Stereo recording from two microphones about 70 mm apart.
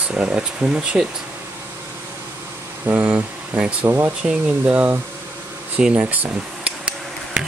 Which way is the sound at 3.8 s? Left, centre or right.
Right.